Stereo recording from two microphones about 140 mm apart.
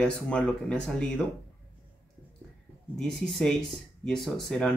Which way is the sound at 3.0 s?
5° left (ahead or behind).